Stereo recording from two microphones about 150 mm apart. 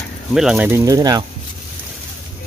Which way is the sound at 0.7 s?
20° right (ahead or behind).